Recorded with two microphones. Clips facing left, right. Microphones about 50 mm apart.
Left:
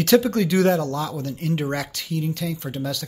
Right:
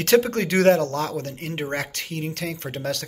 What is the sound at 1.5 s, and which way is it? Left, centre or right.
Speech, right.